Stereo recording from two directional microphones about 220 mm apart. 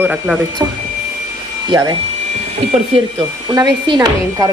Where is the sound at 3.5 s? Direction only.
15° right (ahead or behind).